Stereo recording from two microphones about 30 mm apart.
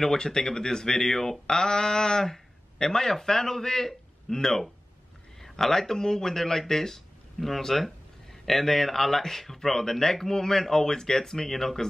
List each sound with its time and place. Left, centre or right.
0.0 s speech: centre
0.9 s speech: centre